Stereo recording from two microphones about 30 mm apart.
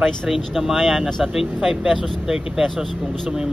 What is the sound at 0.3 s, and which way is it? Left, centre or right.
Speech, centre.